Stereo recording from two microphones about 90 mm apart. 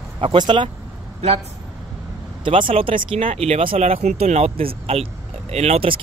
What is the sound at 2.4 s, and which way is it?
Speech, 75° right (ahead or behind).